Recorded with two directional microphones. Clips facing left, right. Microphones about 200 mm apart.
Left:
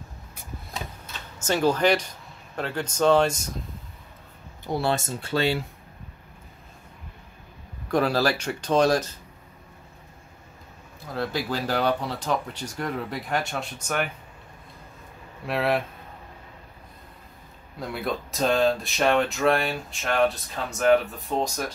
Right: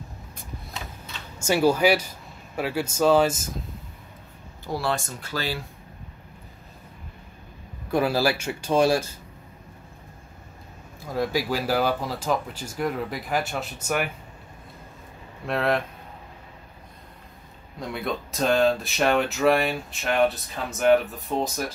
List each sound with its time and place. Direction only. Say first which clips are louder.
1.4 s speech: right 2 dB; 10° right (ahead or behind)
4.6 s speech: left 2 dB; 25° left (ahead or behind)
7.9 s speech: even; 5° right (ahead or behind)
11.1 s speech: right 3 dB; 10° right (ahead or behind)
15.4 s speech: even; 5° left (ahead or behind)
17.7 s speech: even; centre (ahead or behind)